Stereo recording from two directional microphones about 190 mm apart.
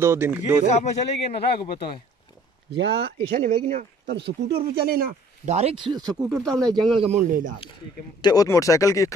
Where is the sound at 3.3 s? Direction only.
45° right (ahead or behind).